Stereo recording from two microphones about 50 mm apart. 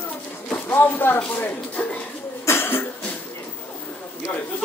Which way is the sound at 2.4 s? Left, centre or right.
Left.